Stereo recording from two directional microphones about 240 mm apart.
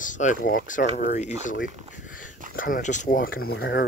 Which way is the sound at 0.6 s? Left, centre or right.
Left.